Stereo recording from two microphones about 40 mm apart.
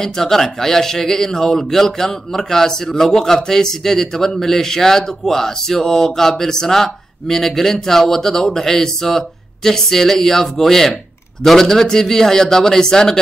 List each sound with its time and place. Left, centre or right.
0.0 s speech: centre